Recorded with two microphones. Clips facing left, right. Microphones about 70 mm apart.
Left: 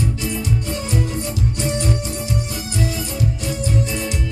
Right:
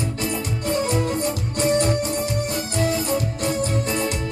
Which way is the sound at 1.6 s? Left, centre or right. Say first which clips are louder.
Right 5 dB; right.